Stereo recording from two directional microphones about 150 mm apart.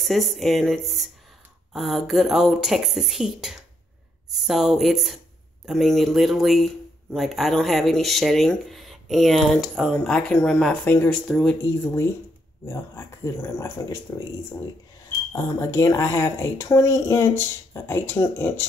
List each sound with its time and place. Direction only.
0.0 s speech: centre (ahead or behind)
11.6 s speech: 15° left (ahead or behind)
15.3 s speech: 20° left (ahead or behind)